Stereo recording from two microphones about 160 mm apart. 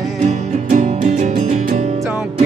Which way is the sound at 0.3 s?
50° right (ahead or behind).